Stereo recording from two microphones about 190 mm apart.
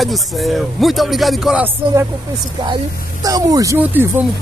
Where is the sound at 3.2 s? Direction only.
20° right (ahead or behind).